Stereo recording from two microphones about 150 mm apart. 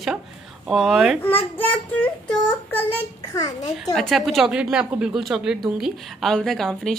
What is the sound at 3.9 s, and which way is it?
Speech, centre (ahead or behind).